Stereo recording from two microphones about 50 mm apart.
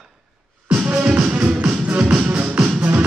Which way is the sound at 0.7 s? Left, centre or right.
Right.